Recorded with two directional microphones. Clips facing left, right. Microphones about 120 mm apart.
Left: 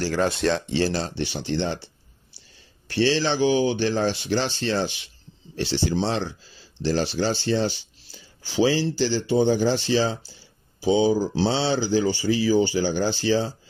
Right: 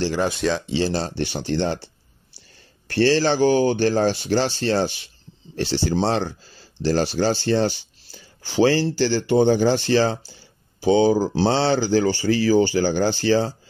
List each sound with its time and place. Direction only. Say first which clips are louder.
0.2 s speech: even; centre (ahead or behind)
0.7 s speech: right 1 dB; 20° right (ahead or behind)
0.9 s speech: right 3 dB; 45° right (ahead or behind)